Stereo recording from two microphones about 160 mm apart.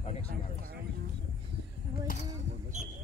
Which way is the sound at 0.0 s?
40° left (ahead or behind).